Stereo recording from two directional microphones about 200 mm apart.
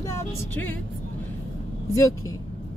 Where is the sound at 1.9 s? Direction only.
15° left (ahead or behind).